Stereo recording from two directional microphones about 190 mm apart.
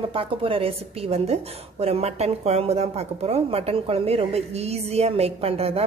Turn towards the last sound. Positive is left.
turn(degrees=-30)  # may be behind; listen again after turning